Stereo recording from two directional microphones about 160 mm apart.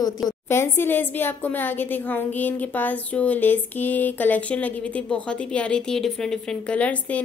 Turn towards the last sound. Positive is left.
turn(degrees=10)  # may be behind; listen again after turning